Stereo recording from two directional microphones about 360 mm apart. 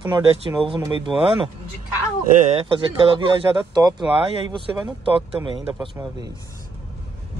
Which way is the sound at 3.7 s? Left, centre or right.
Centre.